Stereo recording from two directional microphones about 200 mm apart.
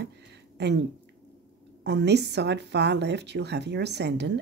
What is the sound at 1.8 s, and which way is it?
A woman's voice, 60° right (ahead or behind).